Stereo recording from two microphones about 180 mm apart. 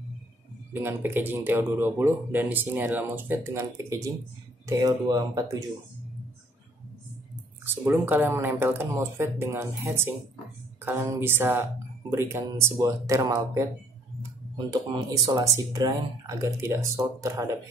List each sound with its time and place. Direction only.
0.8 s speech: 10° right (ahead or behind)
7.6 s speech: 10° right (ahead or behind)
14.7 s speech: 20° right (ahead or behind)